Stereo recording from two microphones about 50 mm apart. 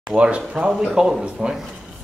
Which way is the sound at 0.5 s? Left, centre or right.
Right.